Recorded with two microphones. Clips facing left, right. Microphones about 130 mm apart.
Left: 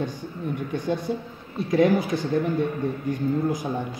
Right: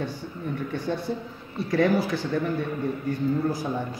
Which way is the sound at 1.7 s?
20° left (ahead or behind).